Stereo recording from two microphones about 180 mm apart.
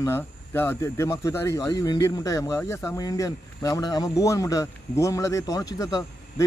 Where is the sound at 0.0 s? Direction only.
15° left (ahead or behind).